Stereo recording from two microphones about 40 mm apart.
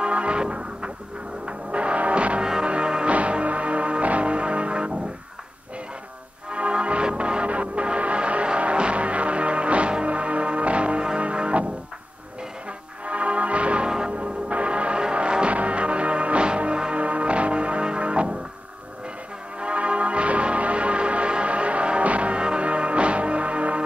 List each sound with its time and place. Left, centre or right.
0.0 s music: right
2.4 s music: centre
6.5 s music: right
13.0 s music: right
13.8 s church bell: centre
14.1 s music: right
19.6 s change ringing: right